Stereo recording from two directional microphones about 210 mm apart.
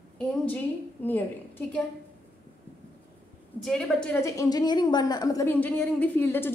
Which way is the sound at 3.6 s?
5° left (ahead or behind).